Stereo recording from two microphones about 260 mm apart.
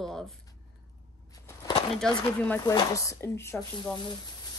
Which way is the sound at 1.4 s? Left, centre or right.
Centre.